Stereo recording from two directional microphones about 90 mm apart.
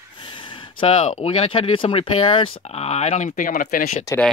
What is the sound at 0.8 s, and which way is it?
Speech, 90° left.